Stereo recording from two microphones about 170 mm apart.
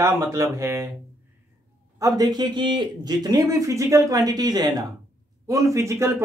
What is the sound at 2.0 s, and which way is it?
Speech, 25° right (ahead or behind).